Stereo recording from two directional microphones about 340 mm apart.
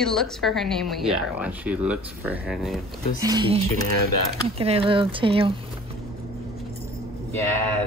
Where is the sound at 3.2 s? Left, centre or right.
Centre.